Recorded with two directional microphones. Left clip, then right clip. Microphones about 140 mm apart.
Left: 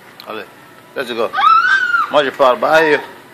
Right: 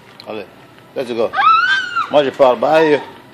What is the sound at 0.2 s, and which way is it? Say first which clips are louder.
Speech: even; 35° right (ahead or behind).